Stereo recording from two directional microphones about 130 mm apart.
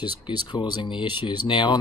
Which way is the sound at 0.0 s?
35° left (ahead or behind).